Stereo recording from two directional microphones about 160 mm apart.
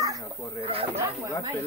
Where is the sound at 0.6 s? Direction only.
35° right (ahead or behind).